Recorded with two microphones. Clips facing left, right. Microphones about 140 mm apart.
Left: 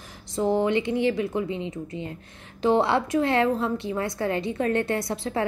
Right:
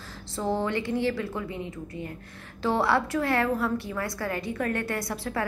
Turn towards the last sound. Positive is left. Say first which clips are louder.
# left 4 dB
turn(degrees=20)  # may be behind; listen again after turning